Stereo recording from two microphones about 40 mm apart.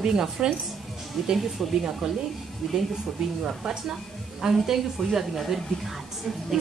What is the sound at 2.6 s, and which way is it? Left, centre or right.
A woman's voice, right.